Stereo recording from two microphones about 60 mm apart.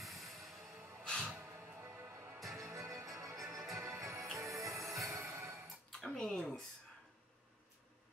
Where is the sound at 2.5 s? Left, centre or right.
Right.